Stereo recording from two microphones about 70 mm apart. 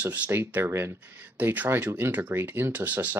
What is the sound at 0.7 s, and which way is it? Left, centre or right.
Speech, right.